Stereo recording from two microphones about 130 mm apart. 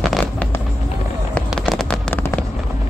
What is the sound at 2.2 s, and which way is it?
Fireworks, 15° left (ahead or behind).